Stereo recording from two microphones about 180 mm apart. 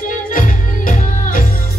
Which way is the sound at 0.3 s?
50° left (ahead or behind).